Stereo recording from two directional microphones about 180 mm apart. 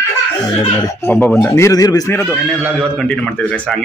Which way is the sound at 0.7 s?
20° left (ahead or behind).